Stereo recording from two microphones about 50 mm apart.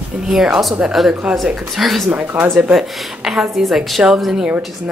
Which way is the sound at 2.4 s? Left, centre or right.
Right.